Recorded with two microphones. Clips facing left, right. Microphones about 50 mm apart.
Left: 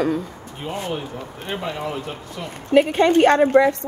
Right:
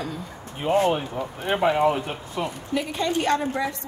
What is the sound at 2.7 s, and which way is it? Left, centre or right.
A woman's voice, left.